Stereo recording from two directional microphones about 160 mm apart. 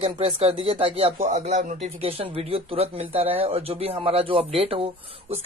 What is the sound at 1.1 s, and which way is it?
Speech, 50° right (ahead or behind).